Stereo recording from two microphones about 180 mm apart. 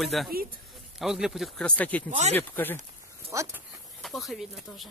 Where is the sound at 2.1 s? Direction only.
40° right (ahead or behind).